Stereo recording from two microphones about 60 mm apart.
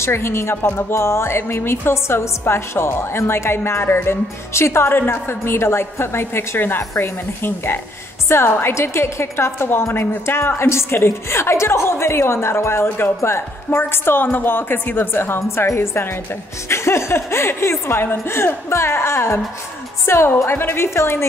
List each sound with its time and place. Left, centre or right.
0.0 s speech: left